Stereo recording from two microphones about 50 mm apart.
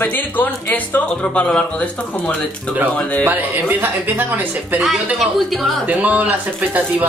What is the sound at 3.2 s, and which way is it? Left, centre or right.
Music, right.